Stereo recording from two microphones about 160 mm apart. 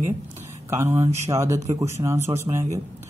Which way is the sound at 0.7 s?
15° right (ahead or behind).